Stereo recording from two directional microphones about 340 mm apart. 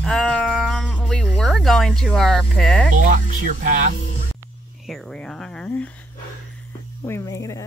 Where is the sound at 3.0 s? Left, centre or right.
Right.